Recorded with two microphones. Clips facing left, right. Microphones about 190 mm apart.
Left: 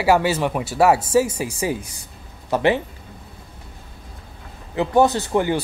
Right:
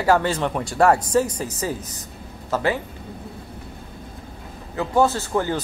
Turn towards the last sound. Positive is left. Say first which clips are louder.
# left 3 dB
turn(degrees=20)  # may be behind; listen again after turning